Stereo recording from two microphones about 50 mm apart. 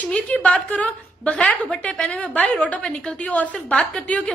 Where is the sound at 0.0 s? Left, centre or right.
Left.